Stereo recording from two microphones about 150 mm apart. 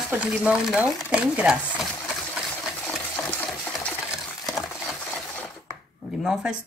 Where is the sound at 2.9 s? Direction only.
10° left (ahead or behind).